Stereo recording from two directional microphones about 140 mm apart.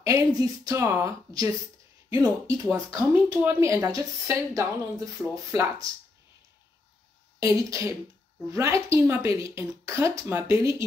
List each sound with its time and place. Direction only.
0.0 s a woman's voice: 25° right (ahead or behind)
7.3 s a woman's voice: 25° right (ahead or behind)